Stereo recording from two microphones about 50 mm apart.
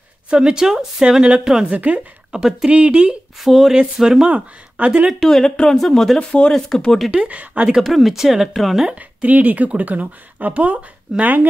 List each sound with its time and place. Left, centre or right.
0.3 s speech: centre
1.2 s speech: right
2.7 s speech: right
3.3 s speech: centre
4.3 s speech: right
5.2 s speech: centre
6.1 s speech: left
6.7 s speech: centre
7.1 s speech: right
7.8 s speech: centre
8.9 s speech: right